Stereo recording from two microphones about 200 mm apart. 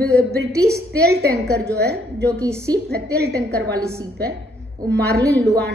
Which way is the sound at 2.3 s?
15° right (ahead or behind).